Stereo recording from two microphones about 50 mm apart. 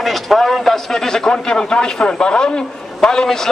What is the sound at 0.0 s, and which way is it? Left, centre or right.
A man's voice, centre.